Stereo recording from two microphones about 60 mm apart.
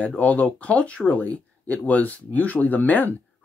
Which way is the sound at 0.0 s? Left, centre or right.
Left.